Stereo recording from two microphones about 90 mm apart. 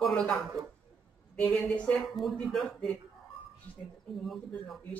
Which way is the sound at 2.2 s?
Centre (ahead or behind).